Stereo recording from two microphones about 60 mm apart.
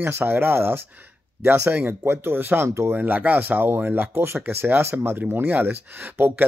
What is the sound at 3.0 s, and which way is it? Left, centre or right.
Speech, right.